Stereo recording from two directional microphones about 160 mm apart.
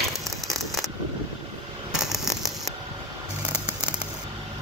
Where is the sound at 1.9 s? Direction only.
5° right (ahead or behind).